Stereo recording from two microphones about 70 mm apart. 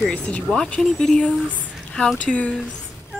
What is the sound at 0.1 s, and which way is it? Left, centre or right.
Speech, centre.